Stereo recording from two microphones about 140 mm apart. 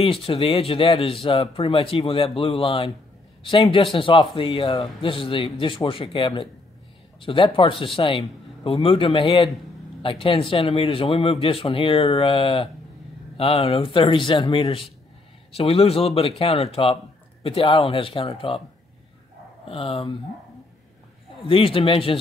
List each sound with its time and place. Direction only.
0.0 s speech: 40° left (ahead or behind)
19.7 s speech: 40° left (ahead or behind)
21.5 s speech: 40° left (ahead or behind)